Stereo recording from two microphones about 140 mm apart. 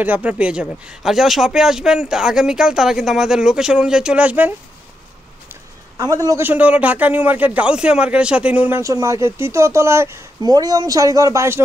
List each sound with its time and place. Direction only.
0.0 s speech: 10° right (ahead or behind)
5.5 s a man's voice: 25° right (ahead or behind)